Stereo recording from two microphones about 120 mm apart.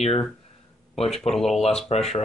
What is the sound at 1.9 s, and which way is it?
Speech, 60° left (ahead or behind).